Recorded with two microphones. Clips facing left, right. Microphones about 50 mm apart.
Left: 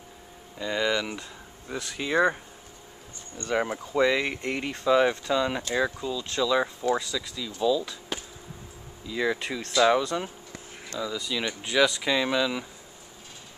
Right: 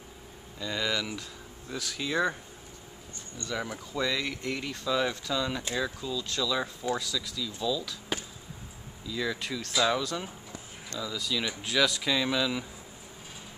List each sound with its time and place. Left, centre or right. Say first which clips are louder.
0.6 s speech: left 5 dB; centre
3.3 s speech: left 7 dB; left
9.0 s speech: left 5 dB; left; by 12.6 s centre